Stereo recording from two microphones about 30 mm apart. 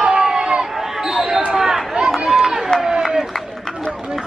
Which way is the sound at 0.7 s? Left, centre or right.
Centre.